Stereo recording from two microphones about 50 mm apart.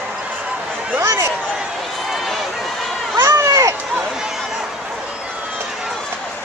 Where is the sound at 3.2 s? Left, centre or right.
Right.